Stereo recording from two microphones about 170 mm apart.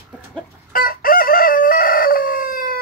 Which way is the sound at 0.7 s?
55° left (ahead or behind).